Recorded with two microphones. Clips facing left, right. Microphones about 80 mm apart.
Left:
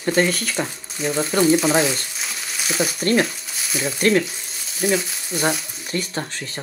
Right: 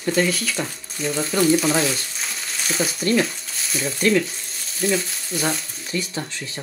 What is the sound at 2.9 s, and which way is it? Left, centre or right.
Speech, left.